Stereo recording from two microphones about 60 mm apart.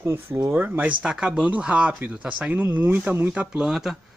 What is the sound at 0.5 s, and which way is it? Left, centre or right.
Speech, right.